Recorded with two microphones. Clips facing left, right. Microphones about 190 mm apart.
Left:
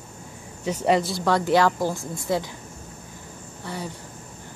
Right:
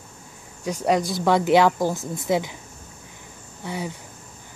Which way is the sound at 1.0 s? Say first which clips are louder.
Right 2 dB; 15° right (ahead or behind).